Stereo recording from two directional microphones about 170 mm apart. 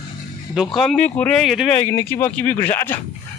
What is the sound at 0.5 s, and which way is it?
Speech, centre (ahead or behind).